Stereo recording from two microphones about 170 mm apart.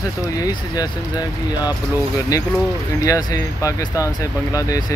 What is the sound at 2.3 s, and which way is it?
Speech, 20° left (ahead or behind).